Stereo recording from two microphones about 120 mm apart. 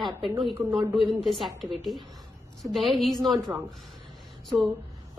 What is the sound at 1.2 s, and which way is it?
A woman's voice, centre (ahead or behind).